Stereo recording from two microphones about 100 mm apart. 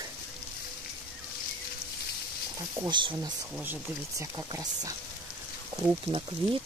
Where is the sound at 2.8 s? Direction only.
50° right (ahead or behind).